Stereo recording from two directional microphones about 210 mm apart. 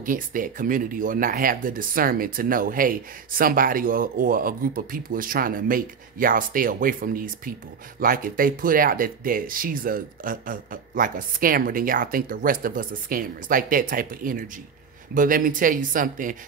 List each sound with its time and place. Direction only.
0.0 s speech: 40° right (ahead or behind)